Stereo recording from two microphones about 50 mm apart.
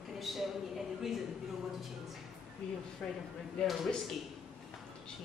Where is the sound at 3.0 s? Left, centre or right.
Centre.